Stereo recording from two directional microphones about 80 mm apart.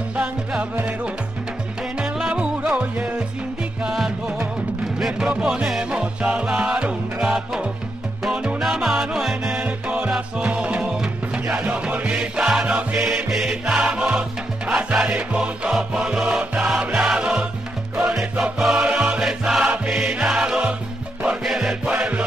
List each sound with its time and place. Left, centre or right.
0.1 s music: centre
9.5 s music: right
9.8 s music: centre
21.9 s music: centre